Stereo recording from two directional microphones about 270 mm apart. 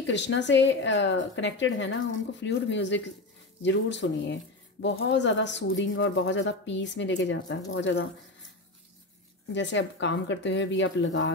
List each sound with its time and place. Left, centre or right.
0.0 s speech: left
9.5 s speech: left